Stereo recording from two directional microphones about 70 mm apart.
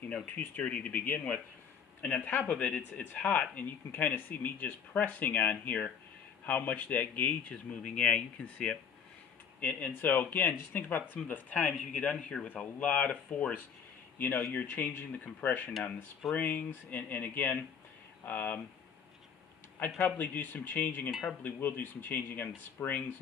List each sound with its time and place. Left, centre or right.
0.1 s speech: centre
19.8 s speech: left
22.8 s speech: left